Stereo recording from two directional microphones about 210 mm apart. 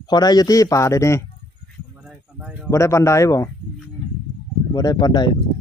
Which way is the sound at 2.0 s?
5° right (ahead or behind).